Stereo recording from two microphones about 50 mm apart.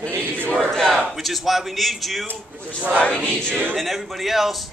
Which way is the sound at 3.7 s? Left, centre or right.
Centre.